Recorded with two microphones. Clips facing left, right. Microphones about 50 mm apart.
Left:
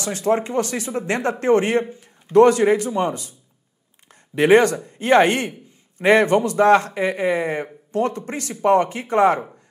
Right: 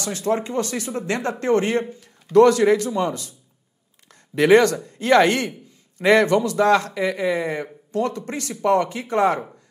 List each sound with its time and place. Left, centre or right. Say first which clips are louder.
0.0 s a man's voice: left 3 dB; left
4.1 s a sound: even; left
4.7 s a man's voice: left 1 dB; left